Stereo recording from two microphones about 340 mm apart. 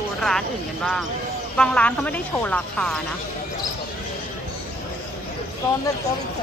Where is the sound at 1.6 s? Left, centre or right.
Centre.